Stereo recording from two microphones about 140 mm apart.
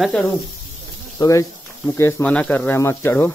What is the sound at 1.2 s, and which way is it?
Speech, 25° left (ahead or behind).